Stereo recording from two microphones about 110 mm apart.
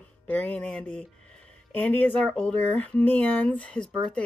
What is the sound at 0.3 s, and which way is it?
Speech, 15° left (ahead or behind).